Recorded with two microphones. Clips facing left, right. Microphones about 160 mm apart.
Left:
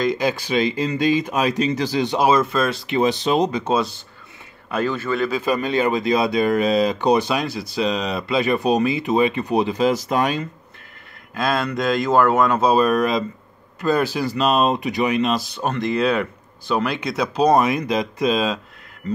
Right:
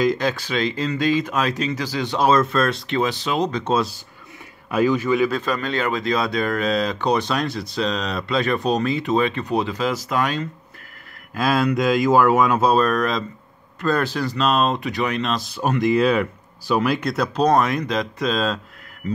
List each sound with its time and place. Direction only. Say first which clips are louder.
0.2 s speech: left 2 dB; 10° left (ahead or behind)
3.0 s speech: left 5 dB; 20° left (ahead or behind)
3.6 s speech: even; centre (ahead or behind)
5.3 s speech: left 3 dB; 10° left (ahead or behind)
11.3 s speech: right 2 dB; 5° right (ahead or behind)
12.7 s speech: left 2 dB; 5° left (ahead or behind)
15.5 s speech: right 3 dB; 10° right (ahead or behind); by 18.6 s 10° left (ahead or behind)